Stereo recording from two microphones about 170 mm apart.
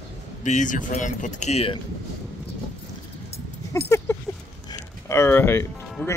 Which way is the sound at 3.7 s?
15° left (ahead or behind).